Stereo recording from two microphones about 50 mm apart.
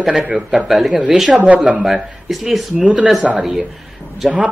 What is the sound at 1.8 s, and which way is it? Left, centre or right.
Speech, centre.